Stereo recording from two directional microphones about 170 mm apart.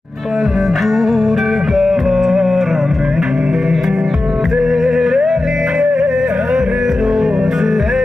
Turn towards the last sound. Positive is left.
turn(degrees=0)  # may be behind; listen again after turning